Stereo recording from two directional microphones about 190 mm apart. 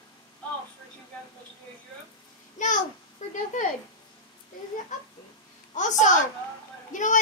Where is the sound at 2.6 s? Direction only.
40° left (ahead or behind).